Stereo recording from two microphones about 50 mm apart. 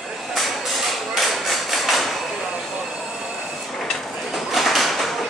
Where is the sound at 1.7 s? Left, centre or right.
Centre.